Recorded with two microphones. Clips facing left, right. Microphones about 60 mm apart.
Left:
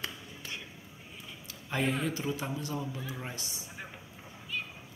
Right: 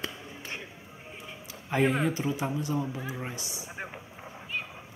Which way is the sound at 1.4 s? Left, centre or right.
Right.